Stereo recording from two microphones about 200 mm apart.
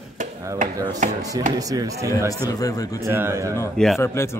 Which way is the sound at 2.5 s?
15° left (ahead or behind).